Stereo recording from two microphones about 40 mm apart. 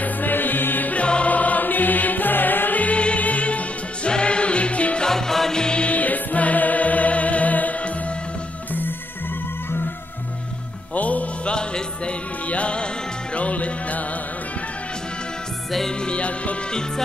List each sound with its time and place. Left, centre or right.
0.0 s music: left
0.9 s music: left
2.8 s music: left
5.0 s music: centre
5.9 s music: left
11.0 s music: left
12.4 s speech: left
16.0 s speech: left